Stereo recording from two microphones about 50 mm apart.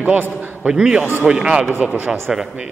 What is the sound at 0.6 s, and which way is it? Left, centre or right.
Speech, centre.